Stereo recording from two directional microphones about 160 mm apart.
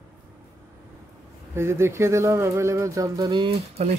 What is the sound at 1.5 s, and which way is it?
Speech, 15° right (ahead or behind).